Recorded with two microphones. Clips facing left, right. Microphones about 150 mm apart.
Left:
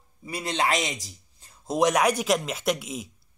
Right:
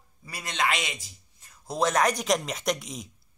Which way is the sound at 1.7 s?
15° left (ahead or behind).